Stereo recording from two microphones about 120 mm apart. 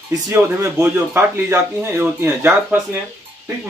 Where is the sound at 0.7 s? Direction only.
15° right (ahead or behind).